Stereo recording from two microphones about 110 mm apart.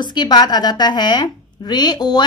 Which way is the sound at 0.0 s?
40° left (ahead or behind).